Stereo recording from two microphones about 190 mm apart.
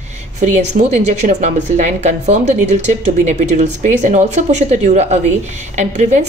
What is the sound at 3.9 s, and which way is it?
A woman's voice, 40° right (ahead or behind).